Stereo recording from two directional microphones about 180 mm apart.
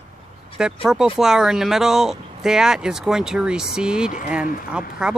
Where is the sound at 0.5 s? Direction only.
5° right (ahead or behind).